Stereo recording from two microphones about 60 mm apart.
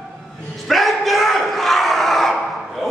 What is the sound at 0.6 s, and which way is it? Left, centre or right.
Battle cry, centre.